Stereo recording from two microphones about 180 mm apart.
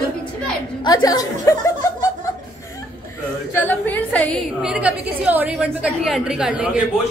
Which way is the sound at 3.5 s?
10° left (ahead or behind).